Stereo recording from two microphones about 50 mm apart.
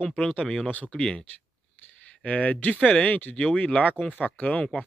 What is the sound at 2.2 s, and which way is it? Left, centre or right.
Speech, left.